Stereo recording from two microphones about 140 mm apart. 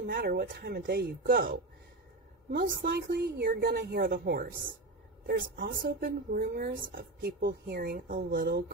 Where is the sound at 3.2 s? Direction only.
90° right.